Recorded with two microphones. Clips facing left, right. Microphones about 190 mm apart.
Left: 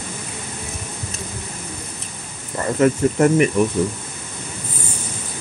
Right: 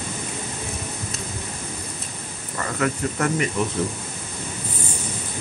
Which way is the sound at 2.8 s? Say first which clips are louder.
Left 9 dB; 25° left (ahead or behind).